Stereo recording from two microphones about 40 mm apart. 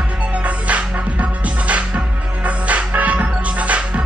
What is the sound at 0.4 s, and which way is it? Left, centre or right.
Music, right.